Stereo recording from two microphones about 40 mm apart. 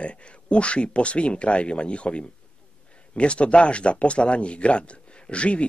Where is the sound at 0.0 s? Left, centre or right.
Left.